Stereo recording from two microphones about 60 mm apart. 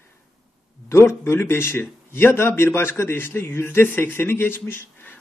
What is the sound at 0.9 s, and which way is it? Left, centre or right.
A man's voice, left.